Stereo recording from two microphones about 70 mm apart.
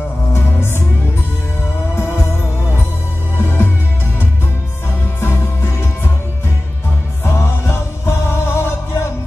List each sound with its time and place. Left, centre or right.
0.3 s music: left
3.3 s music: left
5.2 s music: left
7.2 s music: left